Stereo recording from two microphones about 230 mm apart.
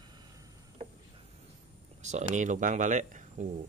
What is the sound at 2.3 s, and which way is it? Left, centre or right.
Speech, right.